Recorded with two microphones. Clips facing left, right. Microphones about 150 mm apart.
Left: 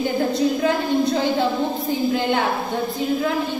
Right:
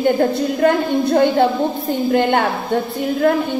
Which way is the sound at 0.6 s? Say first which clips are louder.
Right 4 dB; 60° right (ahead or behind).